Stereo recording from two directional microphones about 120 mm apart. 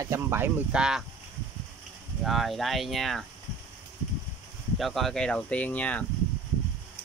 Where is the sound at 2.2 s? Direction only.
Centre (ahead or behind).